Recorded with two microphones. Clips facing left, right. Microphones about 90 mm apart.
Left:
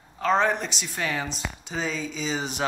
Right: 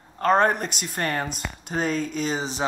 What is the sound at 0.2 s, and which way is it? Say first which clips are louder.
Speech: right 3 dB; 50° right (ahead or behind).